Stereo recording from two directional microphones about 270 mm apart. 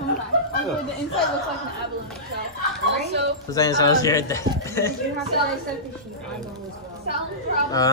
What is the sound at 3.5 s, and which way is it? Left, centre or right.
Speech, centre.